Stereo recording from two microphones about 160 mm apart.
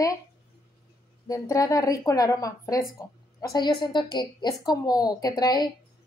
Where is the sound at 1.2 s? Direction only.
20° left (ahead or behind).